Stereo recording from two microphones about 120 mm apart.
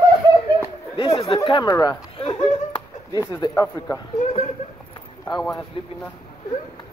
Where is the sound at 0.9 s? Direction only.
50° left (ahead or behind).